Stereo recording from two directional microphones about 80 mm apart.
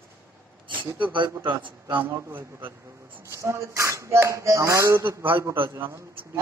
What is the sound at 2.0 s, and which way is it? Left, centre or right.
Speech, right.